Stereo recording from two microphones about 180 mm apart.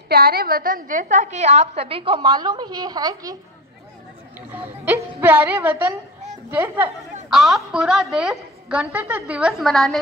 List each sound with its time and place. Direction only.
0.1 s a woman's voice: 60° right (ahead or behind); by 3.3 s 20° right (ahead or behind)
4.5 s a woman's voice: 15° right (ahead or behind)
7.2 s a woman's voice: centre (ahead or behind)